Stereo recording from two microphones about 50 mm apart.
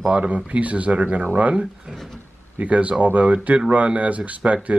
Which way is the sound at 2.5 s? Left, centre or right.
Right.